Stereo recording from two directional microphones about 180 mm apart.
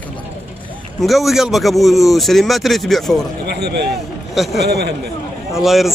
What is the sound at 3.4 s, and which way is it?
A man's voice, 65° right (ahead or behind).